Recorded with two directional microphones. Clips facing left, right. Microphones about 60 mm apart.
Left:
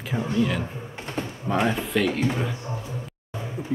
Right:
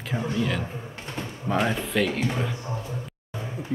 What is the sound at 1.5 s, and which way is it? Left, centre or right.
A man's voice, centre.